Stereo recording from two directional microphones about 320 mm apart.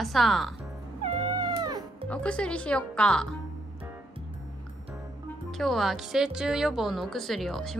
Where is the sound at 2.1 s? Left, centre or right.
Centre.